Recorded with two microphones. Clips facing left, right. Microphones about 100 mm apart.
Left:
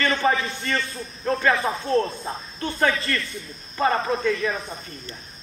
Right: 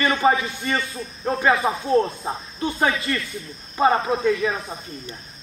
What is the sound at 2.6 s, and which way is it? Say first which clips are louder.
Speech: right 1 dB; 15° right (ahead or behind).